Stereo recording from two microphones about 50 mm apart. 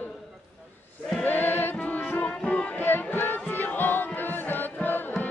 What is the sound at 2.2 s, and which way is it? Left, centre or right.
Music, left.